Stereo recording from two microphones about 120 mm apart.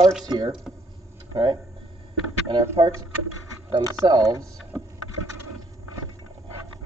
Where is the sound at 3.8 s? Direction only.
30° right (ahead or behind).